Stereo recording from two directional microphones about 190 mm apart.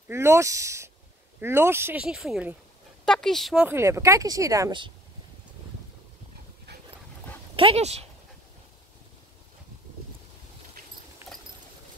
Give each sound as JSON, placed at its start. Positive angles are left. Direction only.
{"t": 0.1, "sound": "speech", "side_deg": -15}
{"t": 7.5, "sound": "speech", "side_deg": -30}
{"t": 11.2, "sound": "a sound", "side_deg": -10}